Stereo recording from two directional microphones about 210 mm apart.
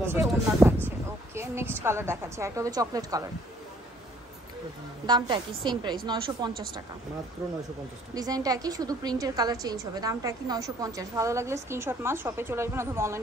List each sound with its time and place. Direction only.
0.0 s a woman's voice: 10° right (ahead or behind)
5.0 s a woman's voice: 20° right (ahead or behind)
8.1 s a woman's voice: 15° right (ahead or behind)